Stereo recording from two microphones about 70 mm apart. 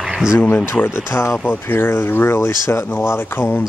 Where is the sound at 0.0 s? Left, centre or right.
Centre.